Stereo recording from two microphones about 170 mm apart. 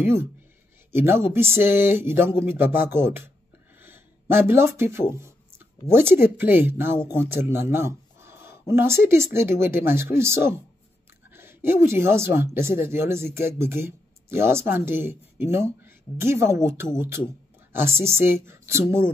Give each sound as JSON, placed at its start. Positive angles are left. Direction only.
{"t": 0.0, "sound": "speech", "side_deg": -15}
{"t": 5.1, "sound": "a sound", "side_deg": -15}
{"t": 5.9, "sound": "speech", "side_deg": -15}